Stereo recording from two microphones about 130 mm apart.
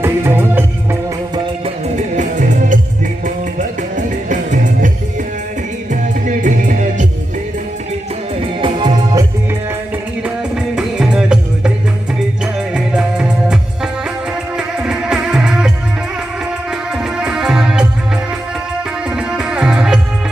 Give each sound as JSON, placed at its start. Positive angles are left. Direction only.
{"t": 0.0, "sound": "music", "side_deg": -15}
{"t": 2.1, "sound": "music", "side_deg": -80}
{"t": 4.3, "sound": "music", "side_deg": -80}
{"t": 6.2, "sound": "music", "side_deg": -85}
{"t": 8.5, "sound": "music", "side_deg": -40}
{"t": 10.8, "sound": "music", "side_deg": -5}
{"t": 12.7, "sound": "music", "side_deg": -5}
{"t": 14.8, "sound": "music", "side_deg": -5}
{"t": 17.2, "sound": "music", "side_deg": -5}
{"t": 19.1, "sound": "music", "side_deg": -5}